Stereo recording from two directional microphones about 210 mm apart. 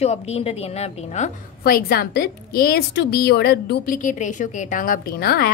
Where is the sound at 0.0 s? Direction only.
30° left (ahead or behind).